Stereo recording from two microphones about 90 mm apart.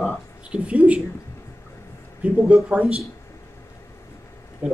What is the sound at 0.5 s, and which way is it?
Speech, 15° right (ahead or behind).